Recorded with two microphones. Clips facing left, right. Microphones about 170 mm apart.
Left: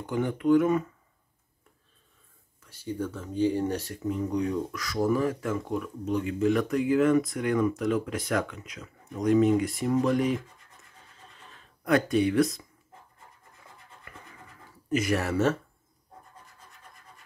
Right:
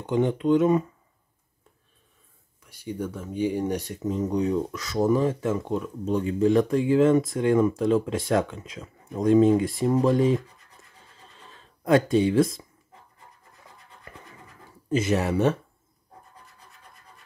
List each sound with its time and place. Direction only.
0.0 s speech: 20° right (ahead or behind)
2.6 s speech: 10° right (ahead or behind); by 10.4 s 30° right (ahead or behind)
11.8 s speech: 25° right (ahead or behind)
14.9 s speech: 25° right (ahead or behind)